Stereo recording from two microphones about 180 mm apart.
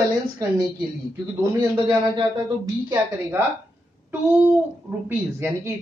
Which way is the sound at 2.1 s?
20° right (ahead or behind).